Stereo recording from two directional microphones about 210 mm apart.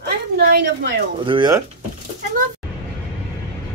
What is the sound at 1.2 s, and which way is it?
Speech, 20° right (ahead or behind).